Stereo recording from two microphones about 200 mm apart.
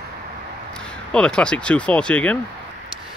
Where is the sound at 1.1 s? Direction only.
5° left (ahead or behind).